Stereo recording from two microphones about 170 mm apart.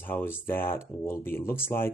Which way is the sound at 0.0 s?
10° left (ahead or behind).